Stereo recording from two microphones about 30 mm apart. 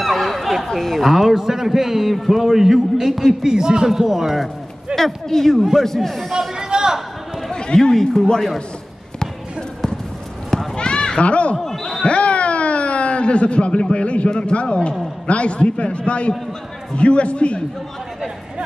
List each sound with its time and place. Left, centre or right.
0.0 s a sound: centre
0.7 s a man's voice: centre
1.0 s a man's voice: centre
4.9 s a man's voice: centre
6.5 s a sound: right
7.5 s chatter: left
7.9 s a man's voice: centre
9.2 s basketball bounce: left
10.8 s children playing: left
11.6 s speech: centre
12.1 s a man's voice: left